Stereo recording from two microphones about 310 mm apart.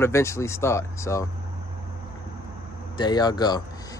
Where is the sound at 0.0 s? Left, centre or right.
Centre.